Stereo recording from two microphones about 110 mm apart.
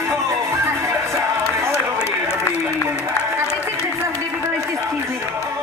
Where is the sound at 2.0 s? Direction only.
25° left (ahead or behind).